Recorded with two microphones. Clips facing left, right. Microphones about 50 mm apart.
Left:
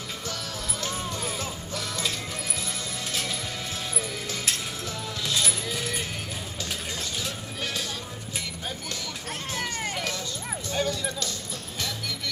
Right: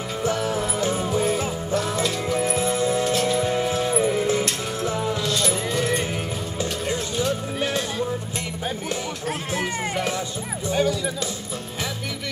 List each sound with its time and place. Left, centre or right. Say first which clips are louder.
0.2 s music: right 15 dB; right
3.1 s music: right 10 dB; centre
3.3 s music: right 12 dB; right
5.2 s music: right 5 dB; centre
6.6 s vehicle: right 9 dB; right
9.5 s music: right 4 dB; centre
10.7 s bow-wow: right 6 dB; centre